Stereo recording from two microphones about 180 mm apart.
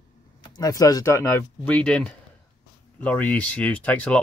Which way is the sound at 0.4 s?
20° left (ahead or behind).